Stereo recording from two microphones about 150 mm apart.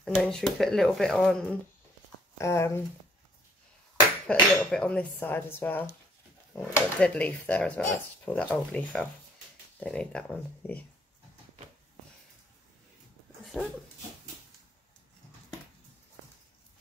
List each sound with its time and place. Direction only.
0.0 s speech: 5° left (ahead or behind)
2.3 s speech: 20° left (ahead or behind)
4.3 s speech: 5° left (ahead or behind)